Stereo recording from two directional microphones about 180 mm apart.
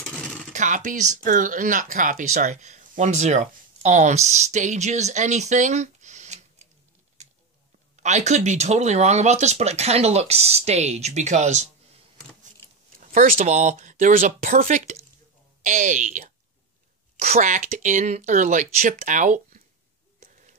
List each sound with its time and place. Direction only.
0.5 s speech: 45° right (ahead or behind)
7.9 s speech: 40° right (ahead or behind)
13.0 s speech: 45° right (ahead or behind)